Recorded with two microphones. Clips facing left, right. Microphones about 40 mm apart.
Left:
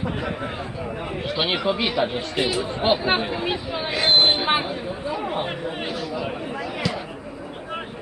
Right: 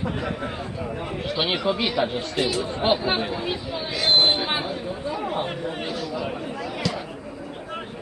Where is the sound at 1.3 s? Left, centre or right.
Centre.